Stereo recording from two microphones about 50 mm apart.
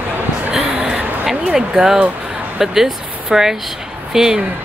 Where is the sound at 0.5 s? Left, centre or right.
Right.